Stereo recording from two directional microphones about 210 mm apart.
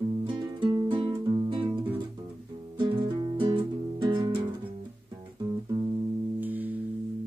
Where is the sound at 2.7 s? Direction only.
25° right (ahead or behind).